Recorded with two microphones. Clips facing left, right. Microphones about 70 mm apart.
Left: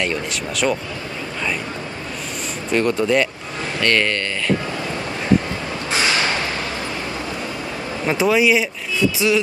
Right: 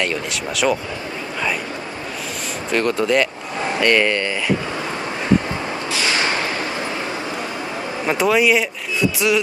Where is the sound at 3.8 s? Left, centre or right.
Centre.